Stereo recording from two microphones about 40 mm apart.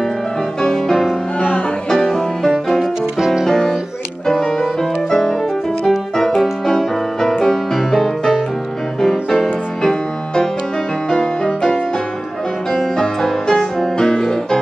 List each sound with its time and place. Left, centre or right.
0.6 s music: centre
5.9 s music: centre
12.9 s music: centre